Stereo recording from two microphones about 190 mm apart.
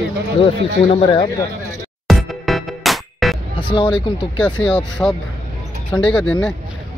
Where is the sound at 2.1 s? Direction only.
Centre (ahead or behind).